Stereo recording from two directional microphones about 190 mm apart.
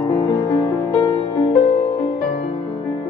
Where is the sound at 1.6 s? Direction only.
35° left (ahead or behind).